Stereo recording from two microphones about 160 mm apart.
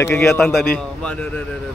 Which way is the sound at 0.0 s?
15° left (ahead or behind).